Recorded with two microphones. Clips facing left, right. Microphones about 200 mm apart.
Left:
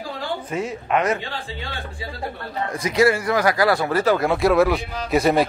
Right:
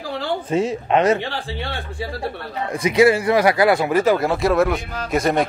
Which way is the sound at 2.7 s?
20° right (ahead or behind).